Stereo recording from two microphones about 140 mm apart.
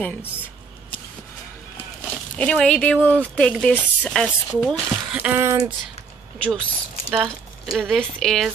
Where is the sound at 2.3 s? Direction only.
5° left (ahead or behind).